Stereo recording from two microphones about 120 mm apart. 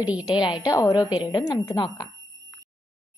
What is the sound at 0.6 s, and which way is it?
A woman's voice, 30° left (ahead or behind).